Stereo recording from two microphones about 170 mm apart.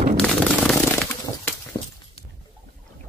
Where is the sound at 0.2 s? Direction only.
Centre (ahead or behind).